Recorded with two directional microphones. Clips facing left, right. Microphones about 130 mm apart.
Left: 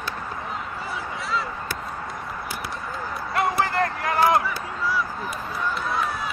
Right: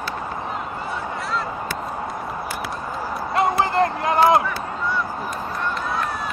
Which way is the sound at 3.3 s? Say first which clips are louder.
Right 3 dB; 25° right (ahead or behind).